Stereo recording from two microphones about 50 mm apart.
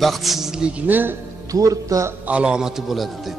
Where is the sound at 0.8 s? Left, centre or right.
Right.